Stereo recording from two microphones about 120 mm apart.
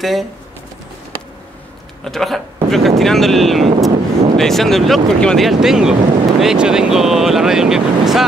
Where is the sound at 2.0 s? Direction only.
Centre (ahead or behind).